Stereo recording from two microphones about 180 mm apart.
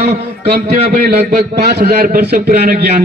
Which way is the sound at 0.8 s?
60° right (ahead or behind).